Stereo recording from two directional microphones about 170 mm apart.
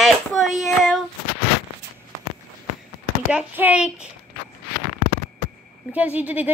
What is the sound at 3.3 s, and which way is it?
Speech, 10° right (ahead or behind).